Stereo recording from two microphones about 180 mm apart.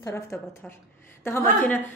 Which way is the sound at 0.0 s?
15° left (ahead or behind).